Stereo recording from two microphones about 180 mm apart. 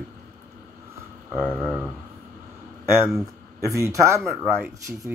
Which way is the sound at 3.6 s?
15° right (ahead or behind).